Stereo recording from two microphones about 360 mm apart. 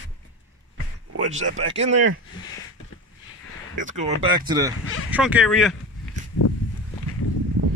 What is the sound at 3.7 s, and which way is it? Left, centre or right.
Speech, centre.